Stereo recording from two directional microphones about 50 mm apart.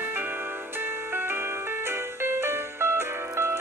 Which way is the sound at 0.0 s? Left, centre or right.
Right.